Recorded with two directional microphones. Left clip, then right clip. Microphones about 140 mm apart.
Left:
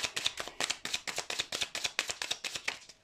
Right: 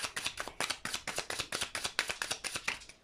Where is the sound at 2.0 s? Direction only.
Centre (ahead or behind).